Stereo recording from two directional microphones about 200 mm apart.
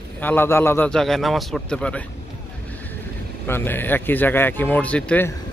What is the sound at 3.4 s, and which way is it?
Speech, 10° left (ahead or behind).